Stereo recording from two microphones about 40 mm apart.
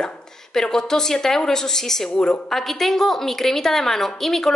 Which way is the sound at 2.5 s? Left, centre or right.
Centre.